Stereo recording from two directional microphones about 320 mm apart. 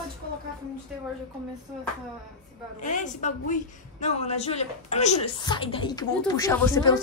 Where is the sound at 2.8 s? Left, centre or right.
Left.